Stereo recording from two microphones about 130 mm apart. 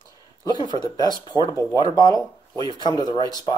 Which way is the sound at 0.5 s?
35° left (ahead or behind).